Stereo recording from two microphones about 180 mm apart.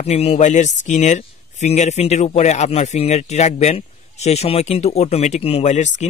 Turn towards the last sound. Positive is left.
turn(degrees=40)  # may be behind; listen again after turning